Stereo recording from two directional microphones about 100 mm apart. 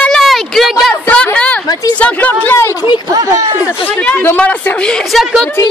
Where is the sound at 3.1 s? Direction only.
35° right (ahead or behind).